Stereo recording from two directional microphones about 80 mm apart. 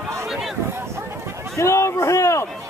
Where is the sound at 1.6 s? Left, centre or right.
Left.